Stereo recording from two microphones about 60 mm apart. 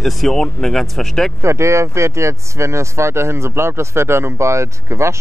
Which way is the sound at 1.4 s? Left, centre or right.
Right.